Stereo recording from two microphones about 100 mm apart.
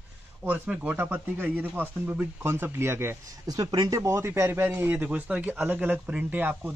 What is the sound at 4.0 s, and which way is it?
A man's voice, 25° right (ahead or behind).